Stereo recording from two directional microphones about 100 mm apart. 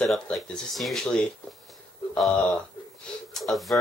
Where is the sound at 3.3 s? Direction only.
Centre (ahead or behind).